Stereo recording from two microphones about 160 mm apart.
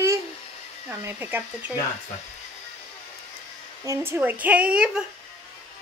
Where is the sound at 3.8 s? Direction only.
20° right (ahead or behind).